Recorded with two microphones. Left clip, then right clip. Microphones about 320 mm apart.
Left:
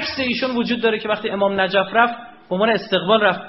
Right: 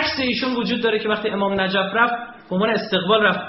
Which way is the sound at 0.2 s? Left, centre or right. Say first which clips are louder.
Left 1 dB; left.